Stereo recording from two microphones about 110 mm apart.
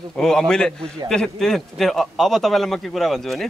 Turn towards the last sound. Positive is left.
turn(degrees=0)  # may be behind; listen again after turning